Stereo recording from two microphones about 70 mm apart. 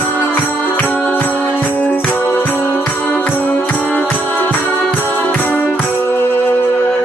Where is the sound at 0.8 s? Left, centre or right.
Left.